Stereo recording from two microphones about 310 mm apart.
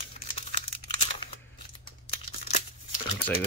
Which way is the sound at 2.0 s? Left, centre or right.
Left.